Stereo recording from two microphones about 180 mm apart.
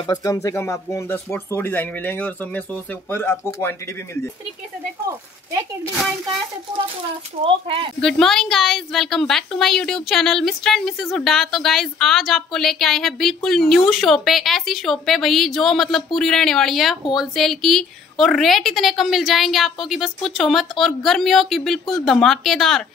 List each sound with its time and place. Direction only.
0.0 s speech: 20° left (ahead or behind)
7.4 s speech: 30° right (ahead or behind)
8.0 s a woman's voice: centre (ahead or behind)